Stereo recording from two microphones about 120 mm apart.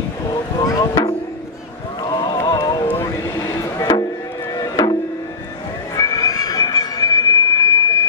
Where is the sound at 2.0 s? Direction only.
35° left (ahead or behind).